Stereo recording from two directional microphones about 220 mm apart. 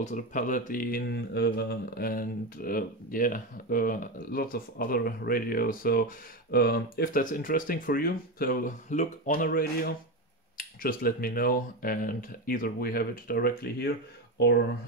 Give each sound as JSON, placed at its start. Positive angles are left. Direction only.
{"t": 0.0, "sound": "speech", "side_deg": 35}